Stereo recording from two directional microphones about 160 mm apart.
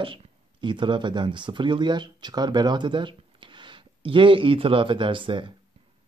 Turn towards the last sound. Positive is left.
turn(degrees=-30)  # may be behind; listen again after turning